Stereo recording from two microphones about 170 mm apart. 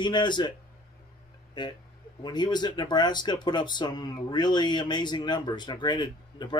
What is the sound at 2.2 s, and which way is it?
Speech, 25° left (ahead or behind).